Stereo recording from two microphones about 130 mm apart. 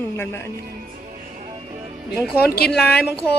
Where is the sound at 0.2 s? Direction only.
20° left (ahead or behind).